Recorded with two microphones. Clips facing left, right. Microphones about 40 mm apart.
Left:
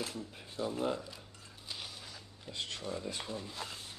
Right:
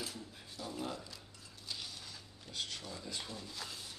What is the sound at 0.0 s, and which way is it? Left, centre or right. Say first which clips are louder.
Speech: left 4 dB; left.